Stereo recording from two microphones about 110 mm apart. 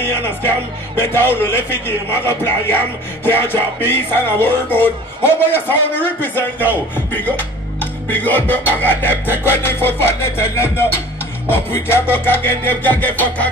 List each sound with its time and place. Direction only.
0.0 s music: 20° left (ahead or behind)
0.9 s a man's voice: 20° left (ahead or behind)
11.5 s a man's voice: 20° left (ahead or behind)